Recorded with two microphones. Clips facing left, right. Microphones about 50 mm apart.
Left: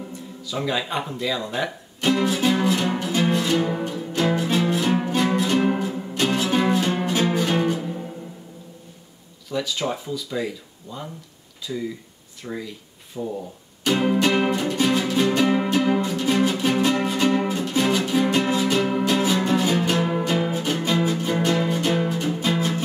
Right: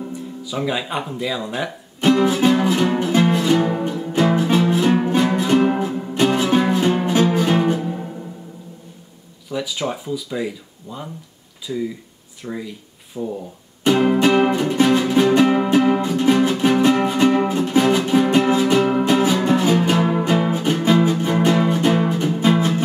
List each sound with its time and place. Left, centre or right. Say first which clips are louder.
0.4 s speech: right 2 dB; centre
2.3 s music: right 4 dB; centre
6.6 s music: right 3 dB; centre
9.5 s speech: right 1 dB; centre
13.8 s music: right 5 dB; centre